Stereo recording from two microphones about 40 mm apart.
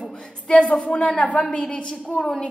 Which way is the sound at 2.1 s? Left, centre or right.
Centre.